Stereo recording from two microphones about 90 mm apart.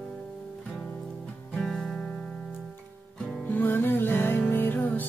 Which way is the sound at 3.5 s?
25° left (ahead or behind).